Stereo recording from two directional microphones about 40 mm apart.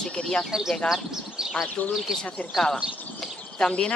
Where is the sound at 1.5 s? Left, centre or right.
Left.